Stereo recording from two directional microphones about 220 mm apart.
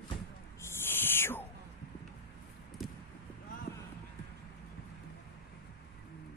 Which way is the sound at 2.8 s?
Centre (ahead or behind).